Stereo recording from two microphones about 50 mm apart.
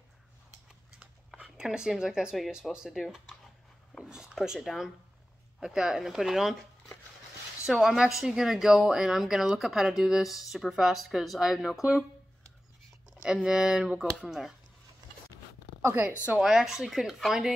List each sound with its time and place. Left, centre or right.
0.9 s a sound: centre
2.6 s speech: centre
4.0 s a sound: centre
4.6 s speech: centre
7.8 s speech: centre
13.2 s speech: centre
14.2 s speech: centre
15.8 s speech: right
16.3 s speech: centre